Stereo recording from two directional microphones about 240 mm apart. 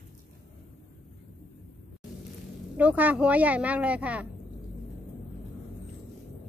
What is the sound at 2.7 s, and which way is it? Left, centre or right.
Speech, centre.